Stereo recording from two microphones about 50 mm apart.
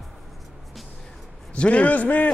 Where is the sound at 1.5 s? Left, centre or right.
Left.